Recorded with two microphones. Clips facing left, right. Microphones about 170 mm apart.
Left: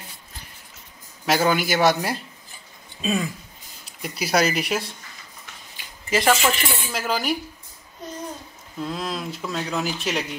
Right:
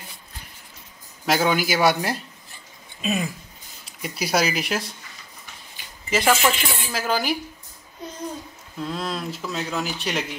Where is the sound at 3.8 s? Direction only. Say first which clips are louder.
Right 1 dB; centre (ahead or behind).